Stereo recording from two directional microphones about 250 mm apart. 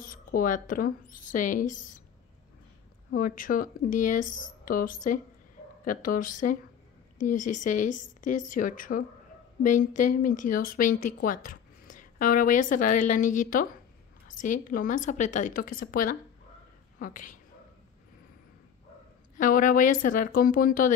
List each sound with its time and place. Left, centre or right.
0.0 s a woman's voice: left
3.1 s a woman's voice: left
19.3 s a woman's voice: left